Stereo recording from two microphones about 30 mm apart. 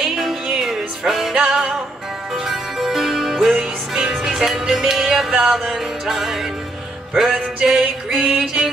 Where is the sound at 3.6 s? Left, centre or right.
Right.